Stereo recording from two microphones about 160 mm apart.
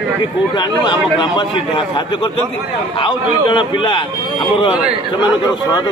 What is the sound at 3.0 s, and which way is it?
A man's voice, 30° left (ahead or behind).